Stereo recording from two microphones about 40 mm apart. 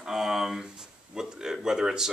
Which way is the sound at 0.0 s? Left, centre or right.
Centre.